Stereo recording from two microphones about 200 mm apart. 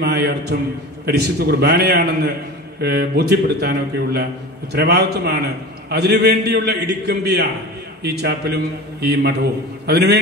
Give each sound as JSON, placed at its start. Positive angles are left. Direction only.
{"t": 0.0, "sound": "a man's voice", "side_deg": -55}
{"t": 2.8, "sound": "a man's voice", "side_deg": -50}